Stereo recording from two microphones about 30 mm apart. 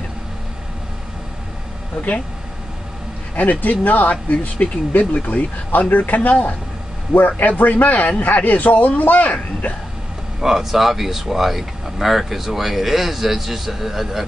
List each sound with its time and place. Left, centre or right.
3.3 s a man's voice: left
10.4 s speech: centre